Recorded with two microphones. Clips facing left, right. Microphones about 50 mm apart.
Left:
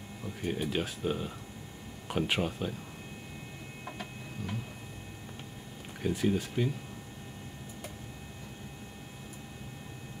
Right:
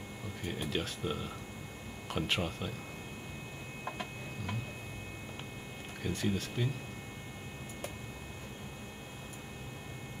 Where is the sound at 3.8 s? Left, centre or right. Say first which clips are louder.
Right 2 dB; centre.